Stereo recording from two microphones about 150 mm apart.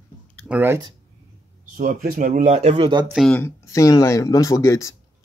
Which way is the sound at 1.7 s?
65° right (ahead or behind).